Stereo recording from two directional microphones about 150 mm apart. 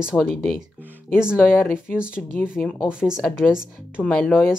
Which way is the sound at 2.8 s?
5° right (ahead or behind).